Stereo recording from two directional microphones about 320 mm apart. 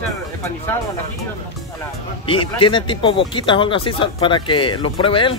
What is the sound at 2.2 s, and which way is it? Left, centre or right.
Speech, centre.